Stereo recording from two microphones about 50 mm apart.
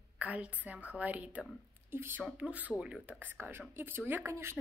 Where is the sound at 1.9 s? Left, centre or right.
Right.